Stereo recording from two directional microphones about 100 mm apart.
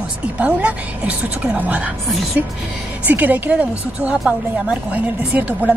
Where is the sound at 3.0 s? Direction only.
15° right (ahead or behind).